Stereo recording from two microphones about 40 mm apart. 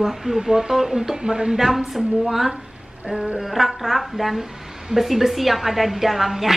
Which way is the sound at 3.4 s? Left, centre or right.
Centre.